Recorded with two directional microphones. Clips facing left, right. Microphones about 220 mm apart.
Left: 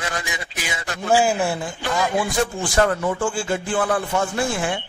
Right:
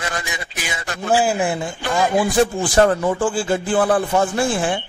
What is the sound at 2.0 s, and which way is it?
Speech, 35° right (ahead or behind).